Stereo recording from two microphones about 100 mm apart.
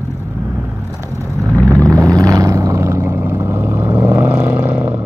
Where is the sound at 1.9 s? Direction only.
35° right (ahead or behind).